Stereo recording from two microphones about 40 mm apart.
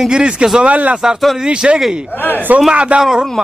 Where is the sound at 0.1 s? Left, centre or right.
Right.